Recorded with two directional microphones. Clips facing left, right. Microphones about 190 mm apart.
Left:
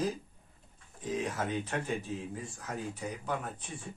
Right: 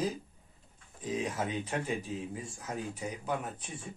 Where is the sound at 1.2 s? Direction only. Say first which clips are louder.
Even; 15° right (ahead or behind).